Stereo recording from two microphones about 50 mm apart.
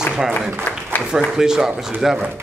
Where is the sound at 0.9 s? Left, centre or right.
Left.